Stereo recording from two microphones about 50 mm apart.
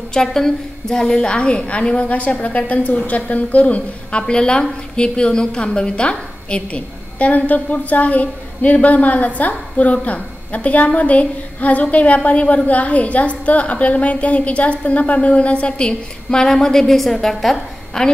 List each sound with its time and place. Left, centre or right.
0.1 s a woman's voice: centre